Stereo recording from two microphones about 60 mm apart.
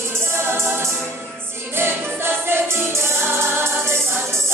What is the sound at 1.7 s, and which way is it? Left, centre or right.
Music, right.